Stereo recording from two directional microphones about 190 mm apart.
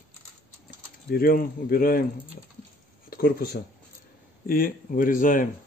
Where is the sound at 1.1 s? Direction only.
50° left (ahead or behind).